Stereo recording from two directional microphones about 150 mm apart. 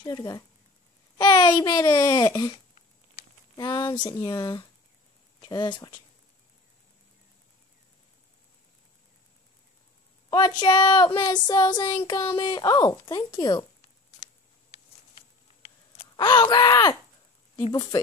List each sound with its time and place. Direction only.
0.0 s a child's voice: 25° left (ahead or behind)
3.5 s speech: 30° left (ahead or behind)
10.3 s speech: 30° left (ahead or behind)
16.2 s speech: 30° left (ahead or behind)